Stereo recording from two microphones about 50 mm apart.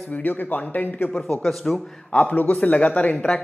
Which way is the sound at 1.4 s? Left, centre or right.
Centre.